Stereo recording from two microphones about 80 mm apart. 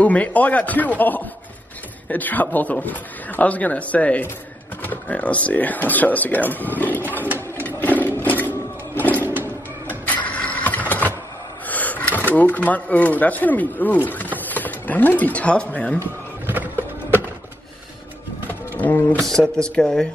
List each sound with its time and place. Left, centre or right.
0.0 s a man's voice: centre
7.6 s sewing machine: left
8.9 s music: left
9.2 s a sound: right
10.0 s mechanisms: centre
11.7 s speech: left
16.4 s a sound: right
18.8 s a man's voice: left
19.2 s speech: centre